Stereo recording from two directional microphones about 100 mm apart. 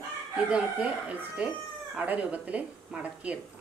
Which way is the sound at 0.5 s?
15° right (ahead or behind).